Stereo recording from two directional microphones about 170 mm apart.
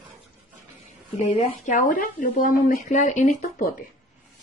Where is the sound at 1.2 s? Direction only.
35° left (ahead or behind).